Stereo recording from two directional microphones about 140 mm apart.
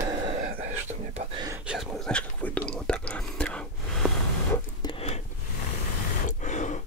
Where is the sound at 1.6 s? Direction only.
5° right (ahead or behind).